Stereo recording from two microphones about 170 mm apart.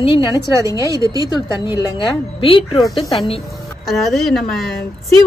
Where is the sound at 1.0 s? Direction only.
20° right (ahead or behind).